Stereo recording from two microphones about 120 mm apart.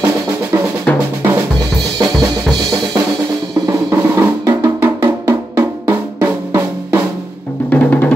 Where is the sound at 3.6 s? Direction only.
25° right (ahead or behind).